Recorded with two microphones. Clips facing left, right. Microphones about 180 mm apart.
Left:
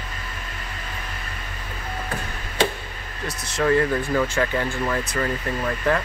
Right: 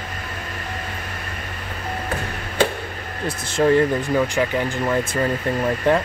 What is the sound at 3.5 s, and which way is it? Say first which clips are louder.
Speech: right 4 dB; 30° right (ahead or behind).